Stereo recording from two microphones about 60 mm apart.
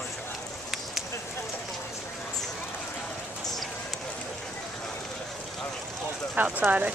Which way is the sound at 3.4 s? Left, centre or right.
Centre.